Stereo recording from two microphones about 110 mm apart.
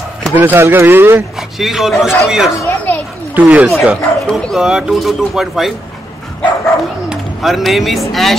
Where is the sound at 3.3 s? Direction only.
15° right (ahead or behind).